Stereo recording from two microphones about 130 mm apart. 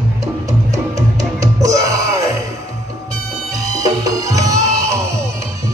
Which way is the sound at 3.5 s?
25° right (ahead or behind).